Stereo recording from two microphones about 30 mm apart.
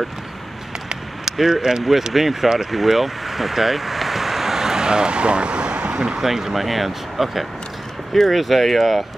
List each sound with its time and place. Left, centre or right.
1.3 s speech: centre
2.6 s vehicle: centre; by 5.9 s right
5.9 s basketball bounce: right
6.2 s speech: centre